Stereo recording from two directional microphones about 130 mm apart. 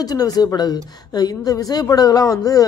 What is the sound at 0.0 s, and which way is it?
Speech, 30° left (ahead or behind).